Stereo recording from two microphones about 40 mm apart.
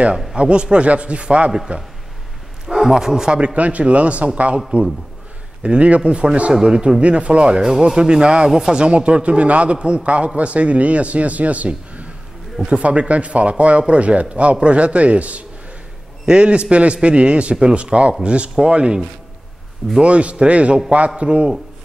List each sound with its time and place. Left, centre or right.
0.4 s a man's voice: right
2.9 s a man's voice: centre
3.5 s a man's voice: right
8.5 s a man's voice: centre
8.7 s a man's voice: right
20.0 s a man's voice: right